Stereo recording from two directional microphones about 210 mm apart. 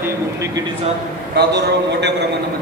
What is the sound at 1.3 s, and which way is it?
Speech, 55° right (ahead or behind).